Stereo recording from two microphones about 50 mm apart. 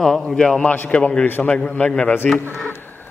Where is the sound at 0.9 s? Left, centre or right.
Left.